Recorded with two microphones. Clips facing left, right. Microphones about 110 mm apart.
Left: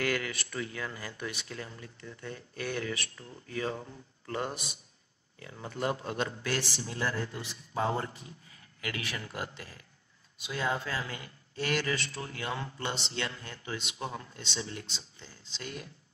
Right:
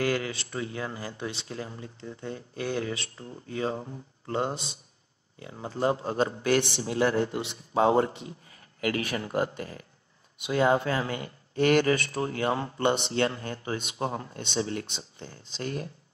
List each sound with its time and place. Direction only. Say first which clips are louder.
0.0 s speech: right 4 dB; 30° right (ahead or behind)
6.4 s speech: right 9 dB; 55° right (ahead or behind)
7.3 s speech: right 8 dB; 70° right (ahead or behind)
8.8 s speech: right 9 dB; 40° right (ahead or behind)
10.3 s speech: right 9 dB; 60° right (ahead or behind); by 12.8 s 40° right (ahead or behind)
12.8 s speech: right 13 dB; 55° right (ahead or behind)